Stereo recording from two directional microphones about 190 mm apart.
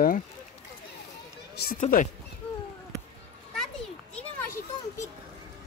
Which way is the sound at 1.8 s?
45° left (ahead or behind).